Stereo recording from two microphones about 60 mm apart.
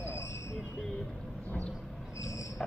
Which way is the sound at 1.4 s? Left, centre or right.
Left.